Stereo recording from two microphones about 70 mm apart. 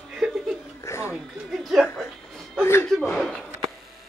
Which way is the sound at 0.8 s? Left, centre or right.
Left.